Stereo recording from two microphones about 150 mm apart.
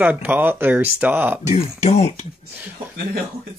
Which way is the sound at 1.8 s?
50° left (ahead or behind).